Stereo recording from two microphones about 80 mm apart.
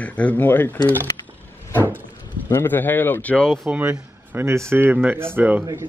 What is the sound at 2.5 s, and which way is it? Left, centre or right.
A man's voice, left.